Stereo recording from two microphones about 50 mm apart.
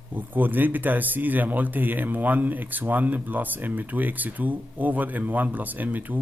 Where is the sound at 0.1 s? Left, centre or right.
Right.